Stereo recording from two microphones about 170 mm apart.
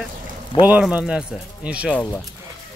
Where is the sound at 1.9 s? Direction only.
10° left (ahead or behind).